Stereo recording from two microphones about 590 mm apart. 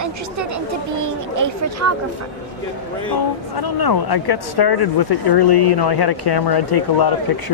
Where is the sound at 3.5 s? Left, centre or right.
Left.